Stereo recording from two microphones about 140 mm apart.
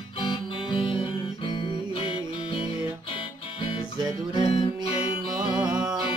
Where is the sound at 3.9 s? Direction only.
30° right (ahead or behind).